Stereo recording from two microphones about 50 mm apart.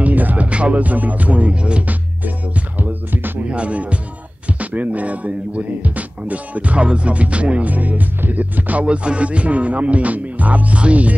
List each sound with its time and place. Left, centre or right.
0.0 s music: right
0.5 s speech: right
2.8 s music: right
3.4 s speech: right
4.5 s music: right
7.7 s music: right